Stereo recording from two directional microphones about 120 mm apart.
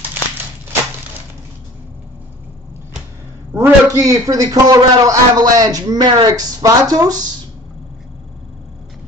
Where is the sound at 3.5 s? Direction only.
20° right (ahead or behind).